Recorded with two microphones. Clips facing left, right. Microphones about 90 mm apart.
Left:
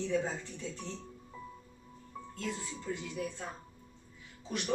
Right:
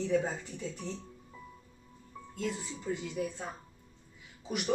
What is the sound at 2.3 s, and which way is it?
Speech, 15° right (ahead or behind).